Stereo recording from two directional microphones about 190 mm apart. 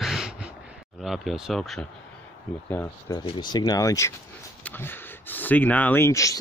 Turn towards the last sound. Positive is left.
turn(degrees=15)  # may be behind; listen again after turning